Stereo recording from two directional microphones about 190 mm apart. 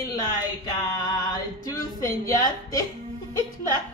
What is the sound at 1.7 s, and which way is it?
Speech, 20° left (ahead or behind).